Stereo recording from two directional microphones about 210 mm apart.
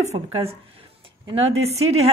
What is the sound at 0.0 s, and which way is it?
A woman's voice, 30° right (ahead or behind).